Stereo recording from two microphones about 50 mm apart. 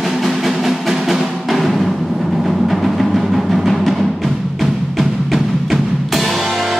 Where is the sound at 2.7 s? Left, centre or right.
Centre.